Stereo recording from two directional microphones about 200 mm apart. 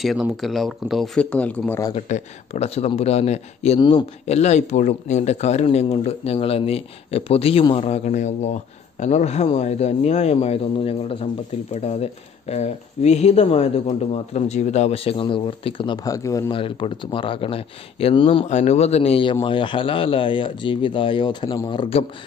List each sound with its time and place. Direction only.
0.0 s speech: centre (ahead or behind)
2.0 s speech: 35° left (ahead or behind)